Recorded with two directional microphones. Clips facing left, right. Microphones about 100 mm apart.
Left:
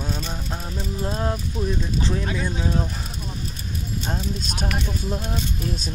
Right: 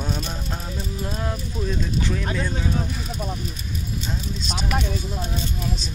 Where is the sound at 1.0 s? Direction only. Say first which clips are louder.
Left 4 dB; 30° left (ahead or behind).